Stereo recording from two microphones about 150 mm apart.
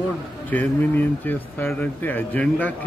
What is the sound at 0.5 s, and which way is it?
Speech, 10° left (ahead or behind).